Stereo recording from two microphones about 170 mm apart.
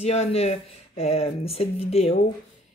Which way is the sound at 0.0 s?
40° left (ahead or behind).